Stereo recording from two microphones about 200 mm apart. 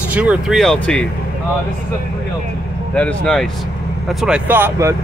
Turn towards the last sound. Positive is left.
turn(degrees=-10)  # may be behind; listen again after turning